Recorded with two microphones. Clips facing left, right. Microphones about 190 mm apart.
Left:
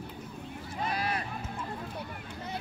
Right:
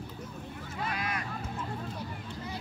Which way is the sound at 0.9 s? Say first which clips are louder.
Left 3 dB; 35° left (ahead or behind).